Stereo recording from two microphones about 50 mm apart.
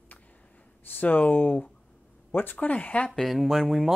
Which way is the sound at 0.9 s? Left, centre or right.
Left.